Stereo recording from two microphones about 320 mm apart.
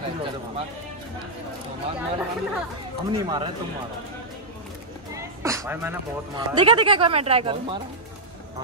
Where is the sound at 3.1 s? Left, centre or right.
Centre.